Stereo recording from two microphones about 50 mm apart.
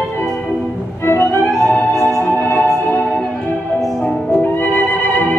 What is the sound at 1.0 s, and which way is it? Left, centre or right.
Music, left.